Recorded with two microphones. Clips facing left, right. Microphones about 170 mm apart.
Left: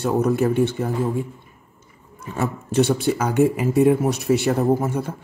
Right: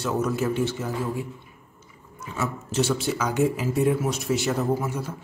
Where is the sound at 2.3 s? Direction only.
60° left (ahead or behind).